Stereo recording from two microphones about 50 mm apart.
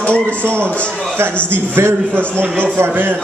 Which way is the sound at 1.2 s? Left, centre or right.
Right.